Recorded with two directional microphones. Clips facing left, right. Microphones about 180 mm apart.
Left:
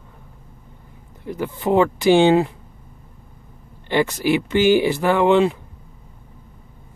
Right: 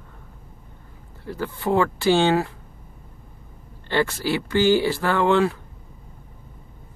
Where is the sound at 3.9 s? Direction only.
15° left (ahead or behind).